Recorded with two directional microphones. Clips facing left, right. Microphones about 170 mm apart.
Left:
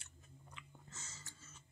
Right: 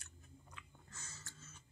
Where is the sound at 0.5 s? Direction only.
20° left (ahead or behind).